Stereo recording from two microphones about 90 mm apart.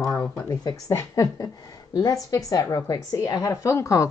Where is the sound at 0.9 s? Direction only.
30° left (ahead or behind).